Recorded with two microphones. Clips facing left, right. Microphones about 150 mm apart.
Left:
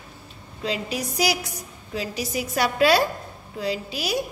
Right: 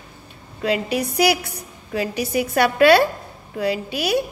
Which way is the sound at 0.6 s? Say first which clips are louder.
Right 6 dB; 60° right (ahead or behind).